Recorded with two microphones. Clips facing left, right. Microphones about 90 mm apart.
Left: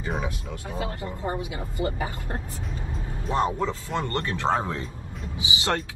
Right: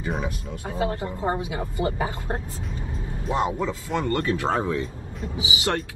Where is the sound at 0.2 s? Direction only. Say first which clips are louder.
Right 2 dB; 25° right (ahead or behind).